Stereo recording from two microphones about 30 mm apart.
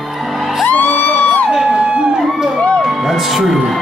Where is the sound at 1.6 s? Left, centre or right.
Right.